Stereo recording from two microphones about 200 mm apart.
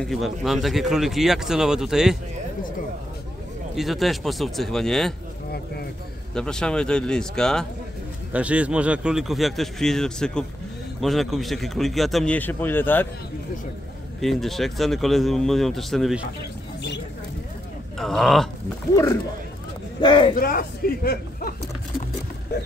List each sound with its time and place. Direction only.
0.1 s speech: centre (ahead or behind)
3.7 s speech: centre (ahead or behind)
6.3 s speech: 5° left (ahead or behind)
14.2 s speech: centre (ahead or behind)
17.9 s speech: centre (ahead or behind)
20.0 s speech: 25° left (ahead or behind)
20.3 s speech: 45° left (ahead or behind)